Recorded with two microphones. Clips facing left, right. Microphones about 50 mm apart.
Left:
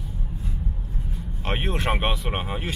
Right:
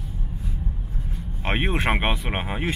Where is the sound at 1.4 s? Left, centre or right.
Right.